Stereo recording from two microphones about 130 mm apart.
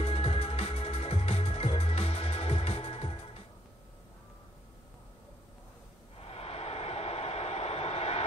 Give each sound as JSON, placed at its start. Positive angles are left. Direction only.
{"t": 0.0, "sound": "music", "side_deg": 50}
{"t": 6.2, "sound": "vehicle", "side_deg": 50}